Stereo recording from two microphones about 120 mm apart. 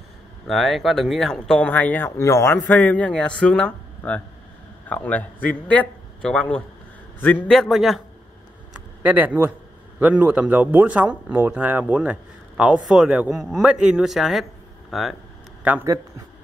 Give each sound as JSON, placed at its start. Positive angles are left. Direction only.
{"t": 0.5, "sound": "a man's voice", "side_deg": 0}
{"t": 7.5, "sound": "a man's voice", "side_deg": 0}
{"t": 9.0, "sound": "speech", "side_deg": -15}